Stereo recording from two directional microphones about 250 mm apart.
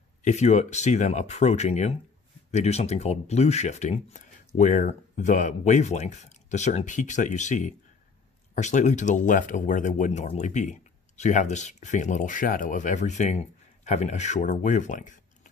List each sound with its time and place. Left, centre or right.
0.2 s speech: left